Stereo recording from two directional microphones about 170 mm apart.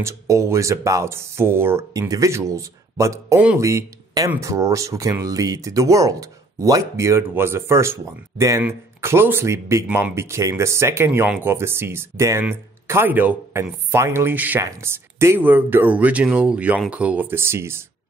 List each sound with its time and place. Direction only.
0.0 s speech: 15° right (ahead or behind)